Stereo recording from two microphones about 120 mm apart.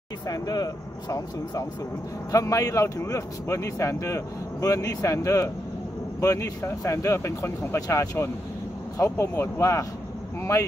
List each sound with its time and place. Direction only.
0.3 s a man's voice: 35° left (ahead or behind)